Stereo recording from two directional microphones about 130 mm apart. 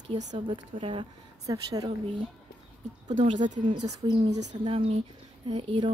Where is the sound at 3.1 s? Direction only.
70° right (ahead or behind).